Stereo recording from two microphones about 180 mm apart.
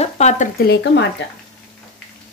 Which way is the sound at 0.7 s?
75° left (ahead or behind).